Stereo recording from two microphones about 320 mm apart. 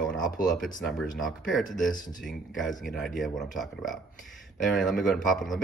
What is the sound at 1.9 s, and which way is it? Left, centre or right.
Speech, left.